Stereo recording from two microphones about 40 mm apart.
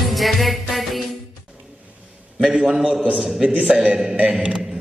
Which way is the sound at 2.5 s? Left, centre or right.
Right.